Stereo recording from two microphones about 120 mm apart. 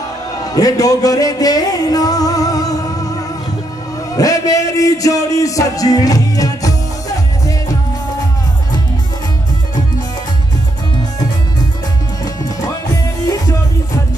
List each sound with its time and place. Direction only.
0.5 s music: 30° left (ahead or behind)
4.1 s a man's voice: 30° left (ahead or behind)